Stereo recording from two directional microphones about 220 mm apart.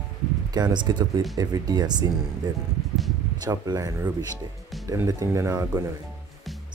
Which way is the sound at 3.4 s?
15° right (ahead or behind).